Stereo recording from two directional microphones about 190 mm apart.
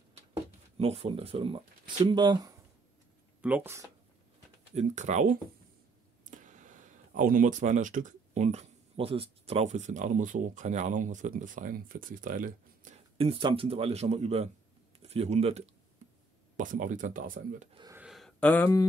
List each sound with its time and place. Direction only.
0.7 s speech: 30° right (ahead or behind)
3.3 s speech: 10° right (ahead or behind)
4.7 s speech: 40° right (ahead or behind)
13.2 s speech: 25° right (ahead or behind); by 17.6 s 45° right (ahead or behind)
17.9 s a sound: 5° right (ahead or behind); by 18.9 s 15° left (ahead or behind)